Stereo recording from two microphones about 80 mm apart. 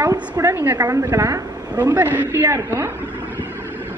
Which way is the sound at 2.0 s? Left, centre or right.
Right.